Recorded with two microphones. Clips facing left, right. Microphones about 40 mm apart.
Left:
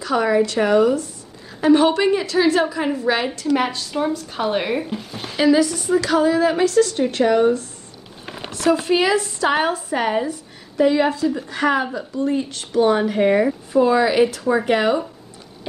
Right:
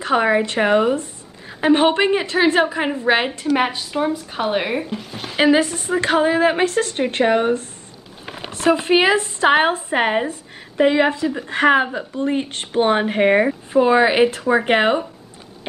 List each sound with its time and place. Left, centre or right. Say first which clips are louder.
0.0 s a woman's voice: right 1 dB; right; by 5.3 s centre
5.4 s a woman's voice: even; right